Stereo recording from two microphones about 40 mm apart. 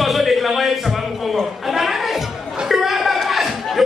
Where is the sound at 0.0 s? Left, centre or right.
Centre.